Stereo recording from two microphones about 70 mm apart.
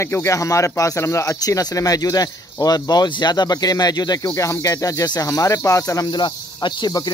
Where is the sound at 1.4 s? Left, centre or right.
Left.